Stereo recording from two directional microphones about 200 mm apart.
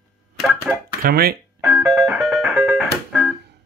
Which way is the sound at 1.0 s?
50° right (ahead or behind).